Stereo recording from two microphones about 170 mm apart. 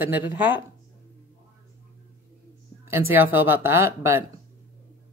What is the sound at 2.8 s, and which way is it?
Speech, 15° right (ahead or behind).